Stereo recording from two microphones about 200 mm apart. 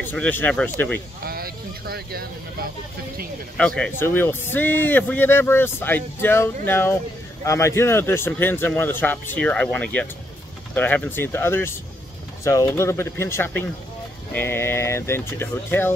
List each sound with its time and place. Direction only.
0.0 s speech: 10° left (ahead or behind)
1.2 s speech: 50° right (ahead or behind)
3.5 s speech: 5° left (ahead or behind)